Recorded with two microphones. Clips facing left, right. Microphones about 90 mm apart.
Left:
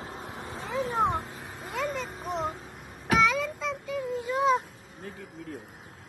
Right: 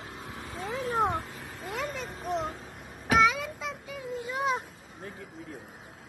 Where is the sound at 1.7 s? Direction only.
Centre (ahead or behind).